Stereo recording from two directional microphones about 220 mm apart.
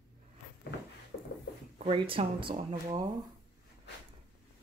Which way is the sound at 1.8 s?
25° right (ahead or behind).